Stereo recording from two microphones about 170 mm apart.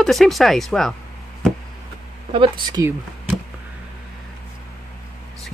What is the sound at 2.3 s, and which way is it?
Speech, 30° right (ahead or behind).